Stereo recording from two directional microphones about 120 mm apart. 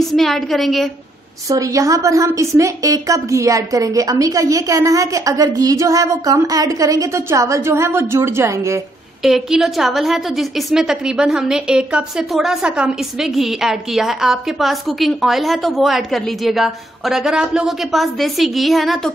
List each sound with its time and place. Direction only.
0.1 s a woman's voice: centre (ahead or behind)
1.5 s a woman's voice: 25° right (ahead or behind)
9.2 s a woman's voice: 5° right (ahead or behind)